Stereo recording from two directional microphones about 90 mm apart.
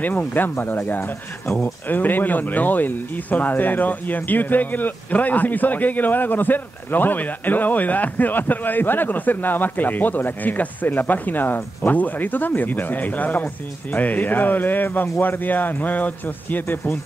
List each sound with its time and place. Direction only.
0.0 s speech: 20° left (ahead or behind)